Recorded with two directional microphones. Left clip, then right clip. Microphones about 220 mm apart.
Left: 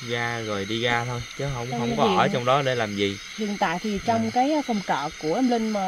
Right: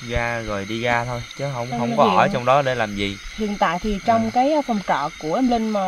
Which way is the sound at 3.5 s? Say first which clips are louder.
Right 5 dB; 40° right (ahead or behind).